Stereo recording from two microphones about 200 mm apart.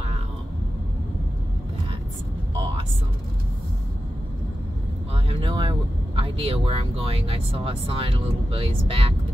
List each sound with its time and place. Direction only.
5.1 s speech: 25° right (ahead or behind)